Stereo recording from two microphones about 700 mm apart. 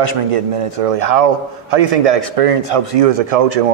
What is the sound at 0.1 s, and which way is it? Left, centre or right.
Speech, right.